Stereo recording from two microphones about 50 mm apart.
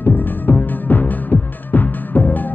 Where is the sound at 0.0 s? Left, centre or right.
Left.